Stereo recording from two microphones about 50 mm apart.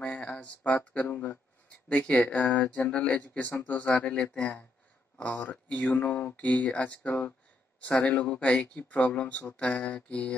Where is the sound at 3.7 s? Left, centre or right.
Left.